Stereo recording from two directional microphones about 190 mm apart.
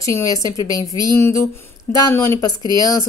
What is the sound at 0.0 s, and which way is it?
Speech, 15° left (ahead or behind).